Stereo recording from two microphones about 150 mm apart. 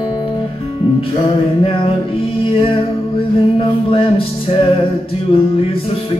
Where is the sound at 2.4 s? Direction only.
35° left (ahead or behind).